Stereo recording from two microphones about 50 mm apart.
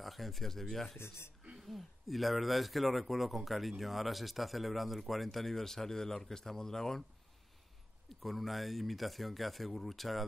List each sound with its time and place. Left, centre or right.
0.0 s speech: centre
0.9 s speech: left
1.6 s speech: centre
8.1 s speech: centre